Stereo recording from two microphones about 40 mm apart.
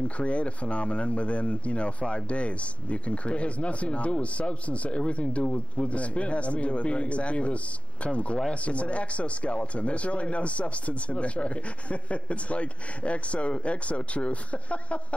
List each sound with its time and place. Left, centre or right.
0.2 s speech: left